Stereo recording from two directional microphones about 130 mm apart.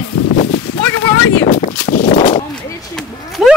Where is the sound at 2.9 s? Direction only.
Centre (ahead or behind).